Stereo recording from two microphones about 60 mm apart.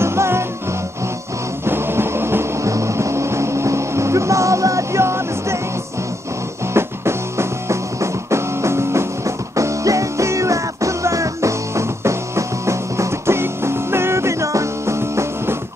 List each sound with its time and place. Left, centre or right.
0.0 s music: right
1.7 s music: right
2.6 s vehicle: right
6.7 s music: right
9.6 s music: right